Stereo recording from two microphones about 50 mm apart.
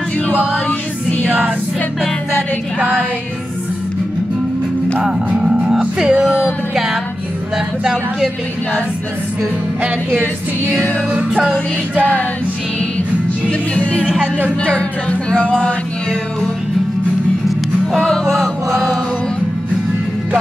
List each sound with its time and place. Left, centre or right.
0.3 s music: right
5.4 s speech: centre
6.7 s music: centre
7.5 s a sound: centre
11.1 s music: right
13.5 s music: left
18.0 s chant: centre